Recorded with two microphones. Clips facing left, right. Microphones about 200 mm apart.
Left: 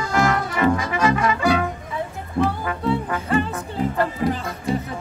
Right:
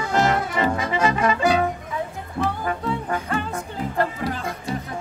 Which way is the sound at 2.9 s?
5° left (ahead or behind).